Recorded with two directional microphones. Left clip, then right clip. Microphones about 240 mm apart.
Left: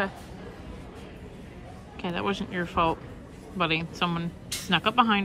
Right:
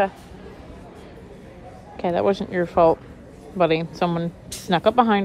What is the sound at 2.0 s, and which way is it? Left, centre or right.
A woman's voice, centre.